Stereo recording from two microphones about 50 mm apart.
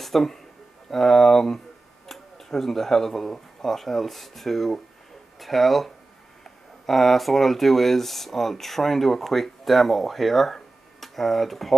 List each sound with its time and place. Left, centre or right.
0.0 s speech: centre